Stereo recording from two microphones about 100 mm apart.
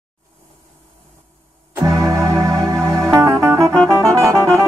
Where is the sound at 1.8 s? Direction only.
35° right (ahead or behind).